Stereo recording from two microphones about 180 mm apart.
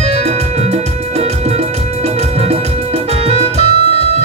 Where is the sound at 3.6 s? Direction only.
35° left (ahead or behind).